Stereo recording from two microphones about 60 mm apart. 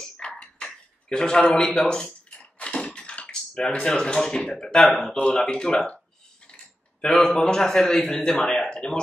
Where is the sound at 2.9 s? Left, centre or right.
Centre.